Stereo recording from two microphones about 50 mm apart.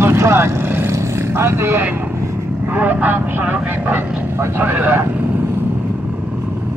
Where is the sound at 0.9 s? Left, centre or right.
Right.